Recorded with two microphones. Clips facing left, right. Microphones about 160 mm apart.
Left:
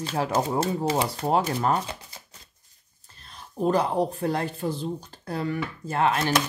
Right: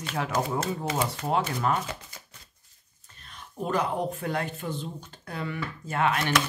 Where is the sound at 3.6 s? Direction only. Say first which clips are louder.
Left 5 dB; 35° left (ahead or behind).